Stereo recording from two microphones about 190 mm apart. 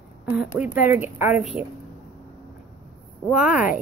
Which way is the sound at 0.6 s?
10° right (ahead or behind).